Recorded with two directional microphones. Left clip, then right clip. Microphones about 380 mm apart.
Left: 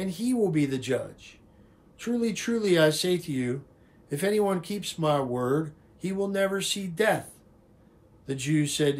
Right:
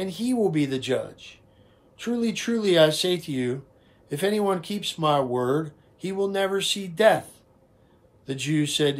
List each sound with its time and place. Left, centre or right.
0.0 s speech: centre
8.3 s speech: centre